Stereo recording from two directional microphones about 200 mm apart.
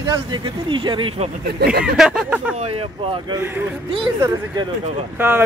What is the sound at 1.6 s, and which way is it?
Speech, 55° right (ahead or behind).